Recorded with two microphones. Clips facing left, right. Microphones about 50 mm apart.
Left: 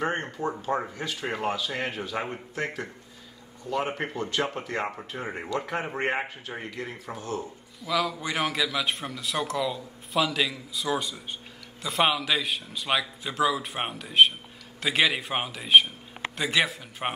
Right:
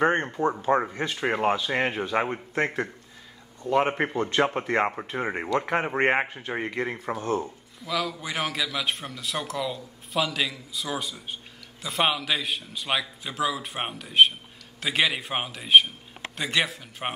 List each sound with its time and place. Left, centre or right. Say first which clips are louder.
0.0 s speech: right 6 dB; right
7.8 s a man's voice: left 2 dB; centre